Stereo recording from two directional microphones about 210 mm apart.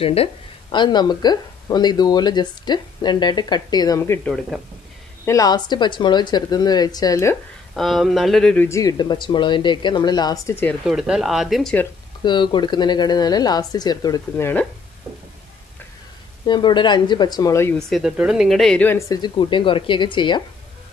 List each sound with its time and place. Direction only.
0.0 s speech: 25° left (ahead or behind); by 4.6 s 5° left (ahead or behind)
5.2 s speech: 15° left (ahead or behind)
7.7 s speech: centre (ahead or behind)
10.9 s speech: centre (ahead or behind)
12.2 s speech: 20° left (ahead or behind)
16.4 s speech: 20° left (ahead or behind)
17.7 s speech: centre (ahead or behind); by 20.4 s 20° left (ahead or behind)